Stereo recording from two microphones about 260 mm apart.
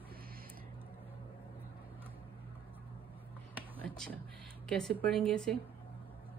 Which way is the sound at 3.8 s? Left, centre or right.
Centre.